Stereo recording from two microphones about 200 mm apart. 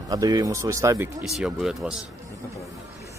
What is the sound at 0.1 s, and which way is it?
Speech, 15° right (ahead or behind).